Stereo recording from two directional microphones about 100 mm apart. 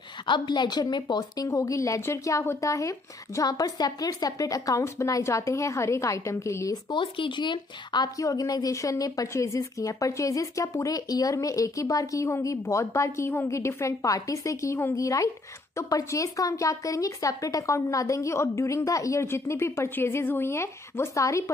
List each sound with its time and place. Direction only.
0.3 s a woman's voice: 45° left (ahead or behind); by 6.8 s 30° left (ahead or behind)
6.9 s speech: 55° left (ahead or behind)
8.2 s a woman's voice: 35° left (ahead or behind)